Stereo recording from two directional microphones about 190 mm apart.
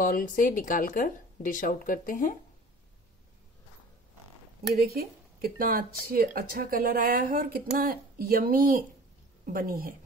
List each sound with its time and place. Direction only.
0.0 s speech: 45° left (ahead or behind)
4.7 s speech: 55° right (ahead or behind)